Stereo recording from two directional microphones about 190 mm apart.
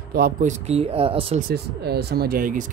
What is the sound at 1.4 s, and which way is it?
Speech, 55° right (ahead or behind).